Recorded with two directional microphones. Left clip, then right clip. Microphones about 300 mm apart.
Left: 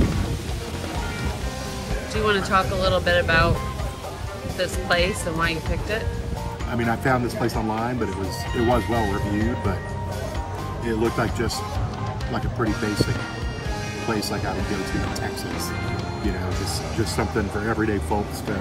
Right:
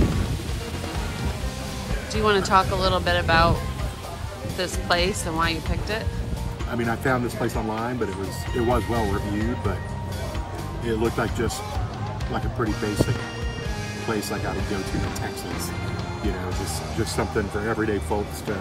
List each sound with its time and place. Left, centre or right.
2.1 s speech: centre
4.6 s speech: centre
10.9 s speech: centre
12.5 s speech: centre
17.2 s speech: centre